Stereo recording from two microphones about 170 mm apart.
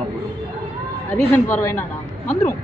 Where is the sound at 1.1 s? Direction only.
10° left (ahead or behind).